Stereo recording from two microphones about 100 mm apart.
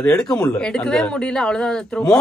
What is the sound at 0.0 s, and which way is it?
A woman's voice, 10° left (ahead or behind).